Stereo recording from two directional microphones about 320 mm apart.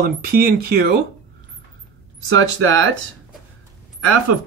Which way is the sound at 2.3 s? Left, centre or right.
Right.